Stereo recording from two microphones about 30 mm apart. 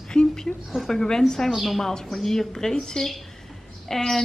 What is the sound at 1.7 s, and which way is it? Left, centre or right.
Speech, centre.